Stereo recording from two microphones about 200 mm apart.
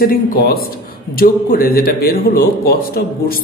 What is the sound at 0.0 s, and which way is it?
Speech, 45° left (ahead or behind).